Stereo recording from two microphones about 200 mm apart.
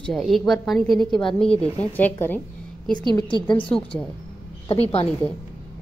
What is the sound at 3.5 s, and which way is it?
A woman's voice, 25° left (ahead or behind).